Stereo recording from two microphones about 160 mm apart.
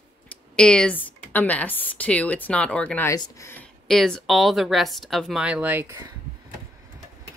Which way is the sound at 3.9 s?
5° left (ahead or behind).